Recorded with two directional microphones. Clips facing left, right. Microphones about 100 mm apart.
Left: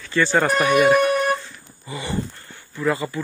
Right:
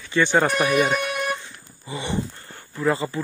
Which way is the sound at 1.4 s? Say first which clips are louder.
Even; 25° right (ahead or behind).